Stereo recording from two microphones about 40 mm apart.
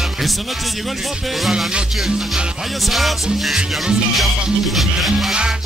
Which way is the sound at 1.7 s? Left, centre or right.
Right.